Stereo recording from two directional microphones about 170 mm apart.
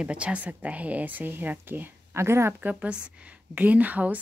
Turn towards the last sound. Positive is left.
turn(degrees=-10)  # may be behind; listen again after turning